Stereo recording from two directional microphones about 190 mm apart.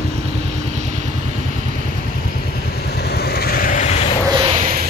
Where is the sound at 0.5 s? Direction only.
40° right (ahead or behind).